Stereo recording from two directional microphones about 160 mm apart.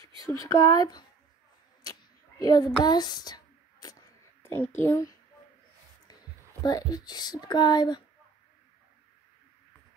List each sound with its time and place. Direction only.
0.6 s speech: 25° left (ahead or behind)
1.8 s a sound: 25° left (ahead or behind)
6.6 s speech: 25° left (ahead or behind)